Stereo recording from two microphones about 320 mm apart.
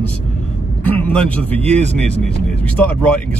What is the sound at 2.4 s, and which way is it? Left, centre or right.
Speech, centre.